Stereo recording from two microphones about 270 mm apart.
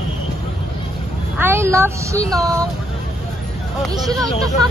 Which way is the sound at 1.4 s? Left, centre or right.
Centre.